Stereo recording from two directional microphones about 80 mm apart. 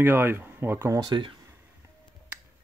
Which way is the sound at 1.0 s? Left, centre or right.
Right.